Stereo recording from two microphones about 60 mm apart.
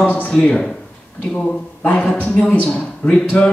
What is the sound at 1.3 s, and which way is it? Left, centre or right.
A woman's voice, left.